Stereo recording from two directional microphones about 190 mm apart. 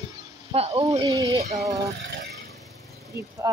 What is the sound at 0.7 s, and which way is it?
Female singing, 20° right (ahead or behind).